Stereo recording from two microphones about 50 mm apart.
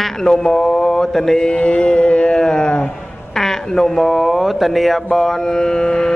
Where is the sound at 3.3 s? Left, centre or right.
Centre.